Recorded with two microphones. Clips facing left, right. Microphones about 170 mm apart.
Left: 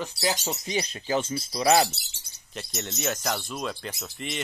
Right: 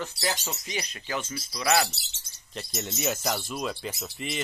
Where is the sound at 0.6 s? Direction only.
30° left (ahead or behind).